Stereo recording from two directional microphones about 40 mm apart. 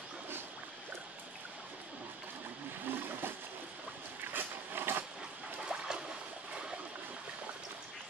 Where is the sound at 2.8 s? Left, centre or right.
Right.